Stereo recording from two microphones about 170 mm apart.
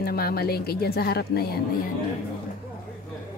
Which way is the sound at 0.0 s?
60° left (ahead or behind).